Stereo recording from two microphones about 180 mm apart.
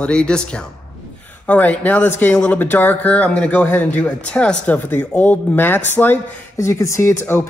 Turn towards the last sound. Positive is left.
turn(degrees=15)  # may be behind; listen again after turning